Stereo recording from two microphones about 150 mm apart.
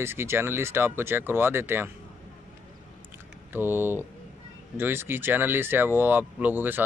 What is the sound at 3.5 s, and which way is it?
Speech, 15° right (ahead or behind).